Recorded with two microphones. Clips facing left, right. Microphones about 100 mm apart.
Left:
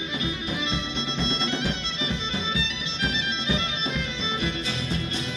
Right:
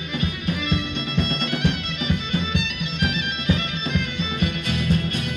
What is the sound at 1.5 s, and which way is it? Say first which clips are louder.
Music: right 4 dB; 55° right (ahead or behind).